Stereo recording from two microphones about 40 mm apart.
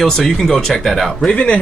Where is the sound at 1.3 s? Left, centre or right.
Left.